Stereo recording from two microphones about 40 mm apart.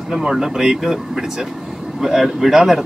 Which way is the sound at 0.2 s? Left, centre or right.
Centre.